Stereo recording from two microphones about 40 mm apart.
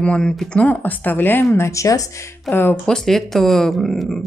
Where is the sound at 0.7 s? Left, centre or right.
Left.